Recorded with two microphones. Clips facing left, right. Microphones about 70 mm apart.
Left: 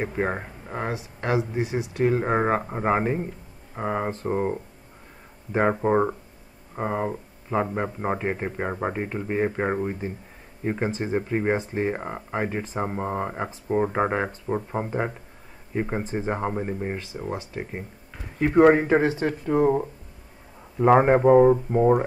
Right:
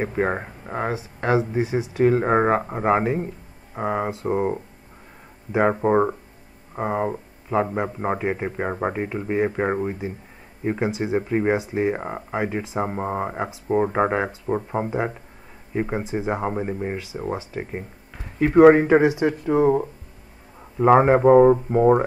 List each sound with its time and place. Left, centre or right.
0.0 s speech: centre
0.9 s speech: right; by 7.2 s centre
7.4 s a man's voice: centre
17.1 s speech: centre
18.4 s speech: centre